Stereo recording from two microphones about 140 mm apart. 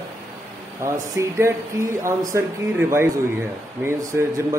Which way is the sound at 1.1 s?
20° right (ahead or behind).